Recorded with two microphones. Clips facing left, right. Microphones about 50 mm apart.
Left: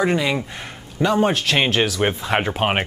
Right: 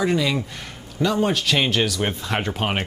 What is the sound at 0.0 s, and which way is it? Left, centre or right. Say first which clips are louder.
Speech: left 2 dB; left.